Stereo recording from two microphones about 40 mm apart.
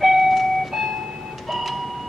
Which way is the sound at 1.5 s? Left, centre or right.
Centre.